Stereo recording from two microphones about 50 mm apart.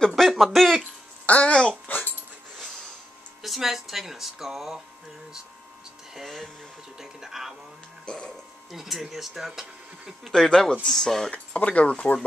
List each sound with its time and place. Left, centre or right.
0.1 s speech: centre
1.2 s a child's voice: left
1.5 s speech: centre
1.9 s dog: left
3.4 s speech: centre
6.1 s speech: centre
8.0 s music: centre
8.7 s speech: centre
10.3 s speech: centre
11.3 s speech: left